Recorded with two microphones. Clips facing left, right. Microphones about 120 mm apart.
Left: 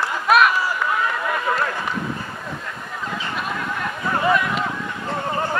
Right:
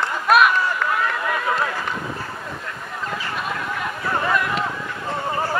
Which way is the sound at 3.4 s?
Centre (ahead or behind).